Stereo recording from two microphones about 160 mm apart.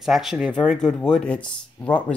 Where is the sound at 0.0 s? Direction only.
Centre (ahead or behind).